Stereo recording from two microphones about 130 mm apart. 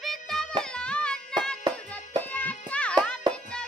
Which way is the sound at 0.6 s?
5° left (ahead or behind).